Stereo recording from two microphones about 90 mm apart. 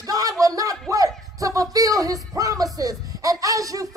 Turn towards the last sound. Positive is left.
turn(degrees=-40)  # may be behind; listen again after turning